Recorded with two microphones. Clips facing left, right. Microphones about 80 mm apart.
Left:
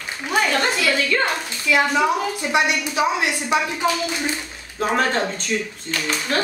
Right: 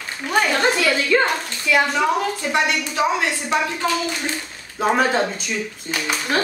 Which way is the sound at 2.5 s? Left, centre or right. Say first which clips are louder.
Left 2 dB; centre.